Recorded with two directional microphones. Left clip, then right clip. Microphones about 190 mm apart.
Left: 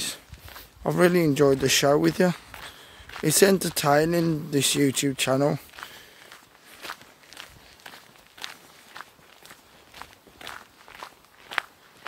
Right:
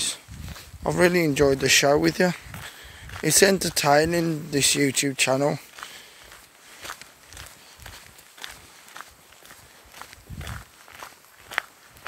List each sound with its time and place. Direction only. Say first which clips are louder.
0.8 s speech: right 1 dB; 15° left (ahead or behind)
6.8 s walk: even; 45° right (ahead or behind)